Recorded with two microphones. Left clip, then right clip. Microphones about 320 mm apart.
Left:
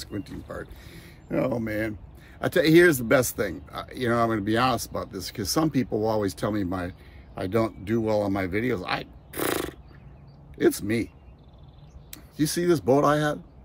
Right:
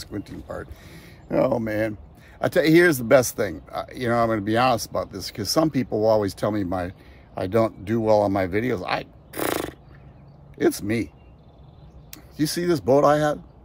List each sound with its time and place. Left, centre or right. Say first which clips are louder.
0.0 s speech: right 2 dB; centre
12.1 s speech: right 2 dB; centre